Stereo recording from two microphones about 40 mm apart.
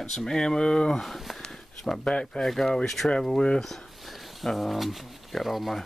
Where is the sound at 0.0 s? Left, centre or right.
Centre.